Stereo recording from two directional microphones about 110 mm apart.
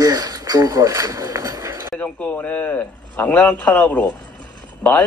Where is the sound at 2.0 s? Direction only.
10° left (ahead or behind).